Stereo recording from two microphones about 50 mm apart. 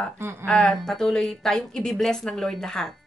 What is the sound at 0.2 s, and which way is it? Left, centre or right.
Speech, right.